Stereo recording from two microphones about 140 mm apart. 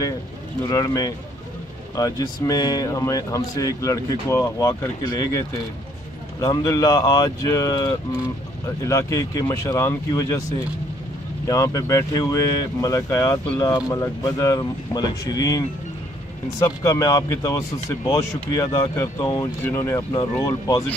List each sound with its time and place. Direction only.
0.7 s speech: 25° left (ahead or behind)
6.4 s speech: 25° left (ahead or behind)
11.4 s speech: 25° left (ahead or behind)
19.6 s speech: 20° left (ahead or behind)